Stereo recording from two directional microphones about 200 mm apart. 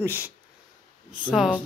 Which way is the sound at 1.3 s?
5° right (ahead or behind).